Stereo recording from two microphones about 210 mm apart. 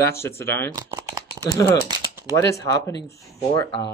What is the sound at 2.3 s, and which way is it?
Speech, 15° left (ahead or behind).